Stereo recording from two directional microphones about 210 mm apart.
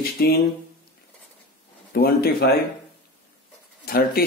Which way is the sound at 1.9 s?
45° left (ahead or behind).